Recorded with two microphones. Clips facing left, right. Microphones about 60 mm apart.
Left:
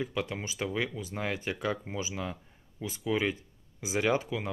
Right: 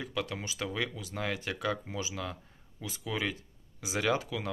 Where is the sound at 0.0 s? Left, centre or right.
Centre.